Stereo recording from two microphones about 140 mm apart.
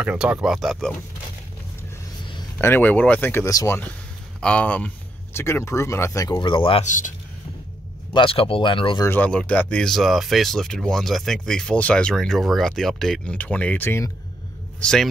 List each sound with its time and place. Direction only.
0.0 s speech: 10° right (ahead or behind)
2.6 s speech: 15° left (ahead or behind)
4.4 s speech: 10° left (ahead or behind)
6.4 s speech: 35° left (ahead or behind)
6.8 s speech: 65° left (ahead or behind)
8.1 s speech: 35° left (ahead or behind)
9.0 s speech: 15° left (ahead or behind)
14.8 s a man's voice: 5° left (ahead or behind)